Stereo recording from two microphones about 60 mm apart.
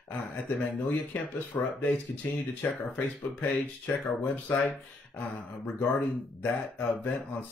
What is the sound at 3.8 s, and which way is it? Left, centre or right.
Speech, left.